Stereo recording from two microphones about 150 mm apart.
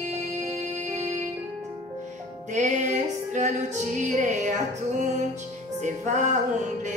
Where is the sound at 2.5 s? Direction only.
55° right (ahead or behind).